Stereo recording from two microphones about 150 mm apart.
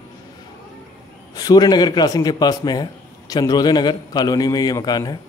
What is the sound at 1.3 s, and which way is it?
A man's voice, 25° left (ahead or behind).